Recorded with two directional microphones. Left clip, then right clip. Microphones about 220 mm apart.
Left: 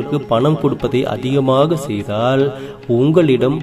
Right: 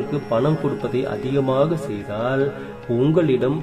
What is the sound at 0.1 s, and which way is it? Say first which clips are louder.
A man's voice: left 6 dB; 15° left (ahead or behind).